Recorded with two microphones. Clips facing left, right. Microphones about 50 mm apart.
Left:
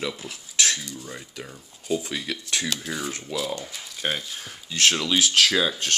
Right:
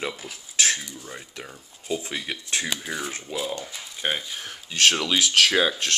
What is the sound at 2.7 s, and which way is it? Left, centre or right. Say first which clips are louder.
Speech: even; centre.